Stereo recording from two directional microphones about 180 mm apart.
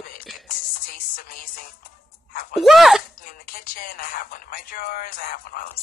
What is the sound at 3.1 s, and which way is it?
Speech, 50° left (ahead or behind).